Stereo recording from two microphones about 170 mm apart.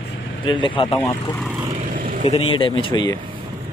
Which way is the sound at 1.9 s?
55° right (ahead or behind).